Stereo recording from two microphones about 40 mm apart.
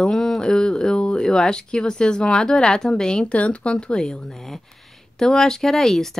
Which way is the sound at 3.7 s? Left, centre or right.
Left.